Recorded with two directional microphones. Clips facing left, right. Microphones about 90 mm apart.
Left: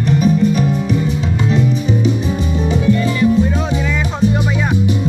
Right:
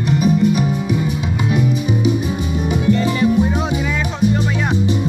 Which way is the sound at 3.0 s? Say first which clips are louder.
Left 1 dB; 20° right (ahead or behind).